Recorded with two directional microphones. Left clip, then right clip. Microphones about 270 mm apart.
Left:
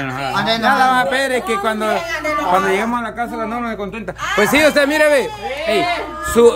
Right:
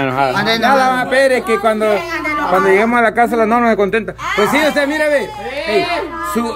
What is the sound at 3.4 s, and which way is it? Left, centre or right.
Speech, centre.